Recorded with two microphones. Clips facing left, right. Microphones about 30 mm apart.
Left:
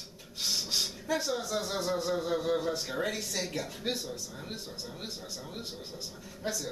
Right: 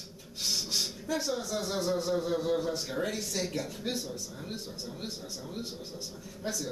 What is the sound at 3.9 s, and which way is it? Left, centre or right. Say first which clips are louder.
Speech: even; left.